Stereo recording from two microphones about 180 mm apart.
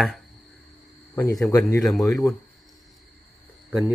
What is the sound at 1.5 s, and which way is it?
Speech, 15° left (ahead or behind).